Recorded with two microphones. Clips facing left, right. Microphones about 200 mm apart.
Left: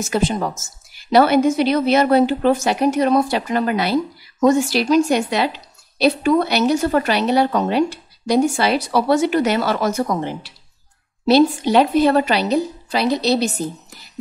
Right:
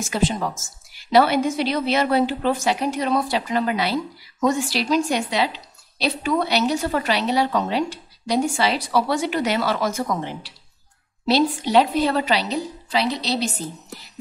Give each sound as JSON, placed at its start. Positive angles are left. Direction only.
{"t": 1.1, "sound": "a woman's voice", "side_deg": 50}